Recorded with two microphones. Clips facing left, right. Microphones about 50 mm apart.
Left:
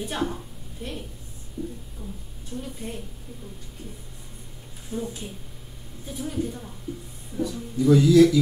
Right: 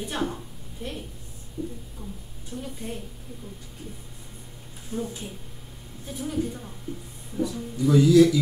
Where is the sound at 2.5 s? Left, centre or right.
Right.